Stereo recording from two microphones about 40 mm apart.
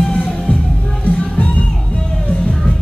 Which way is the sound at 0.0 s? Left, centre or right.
Centre.